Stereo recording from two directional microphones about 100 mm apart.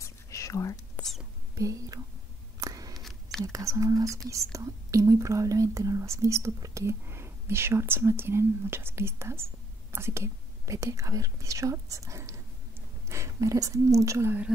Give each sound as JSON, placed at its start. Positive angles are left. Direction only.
{"t": 0.0, "sound": "whispering", "side_deg": 30}
{"t": 0.9, "sound": "whispering", "side_deg": 5}
{"t": 1.5, "sound": "speech", "side_deg": -35}
{"t": 2.6, "sound": "a sound", "side_deg": -35}
{"t": 3.0, "sound": "a sound", "side_deg": 5}
{"t": 3.5, "sound": "speech", "side_deg": -35}